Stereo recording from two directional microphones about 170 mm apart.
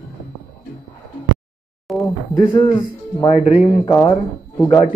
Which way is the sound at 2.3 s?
30° left (ahead or behind).